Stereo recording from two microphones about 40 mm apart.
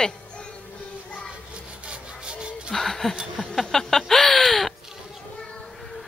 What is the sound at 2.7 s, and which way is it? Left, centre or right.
Speech, centre.